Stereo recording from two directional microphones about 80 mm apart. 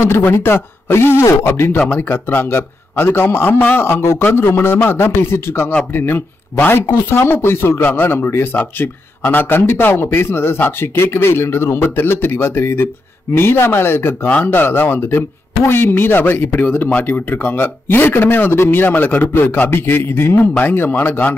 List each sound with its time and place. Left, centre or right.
0.0 s speech: left